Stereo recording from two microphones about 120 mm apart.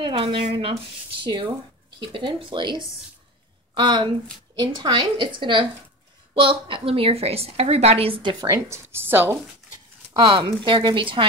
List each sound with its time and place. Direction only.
0.0 s a woman's voice: 50° right (ahead or behind)
2.0 s a woman's voice: 45° right (ahead or behind)
8.6 s a woman's voice: 20° right (ahead or behind)
10.1 s a woman's voice: 45° right (ahead or behind)